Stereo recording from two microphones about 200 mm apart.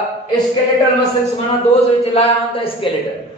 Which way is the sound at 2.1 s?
25° left (ahead or behind).